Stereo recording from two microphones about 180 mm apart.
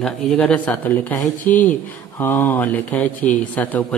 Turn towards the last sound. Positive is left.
turn(degrees=10)  # may be behind; listen again after turning